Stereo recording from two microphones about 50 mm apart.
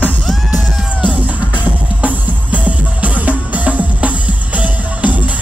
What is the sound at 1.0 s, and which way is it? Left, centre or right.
Music, right.